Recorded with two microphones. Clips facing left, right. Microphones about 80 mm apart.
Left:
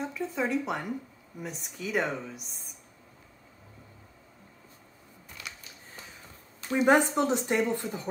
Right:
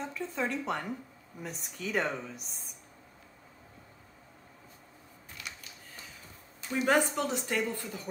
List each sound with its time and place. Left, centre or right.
0.0 s a woman's voice: centre
6.9 s a woman's voice: left